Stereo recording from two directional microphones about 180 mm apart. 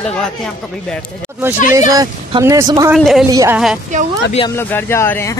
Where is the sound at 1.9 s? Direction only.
20° right (ahead or behind).